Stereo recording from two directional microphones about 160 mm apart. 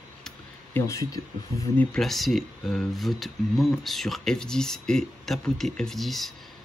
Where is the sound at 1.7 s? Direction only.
5° left (ahead or behind).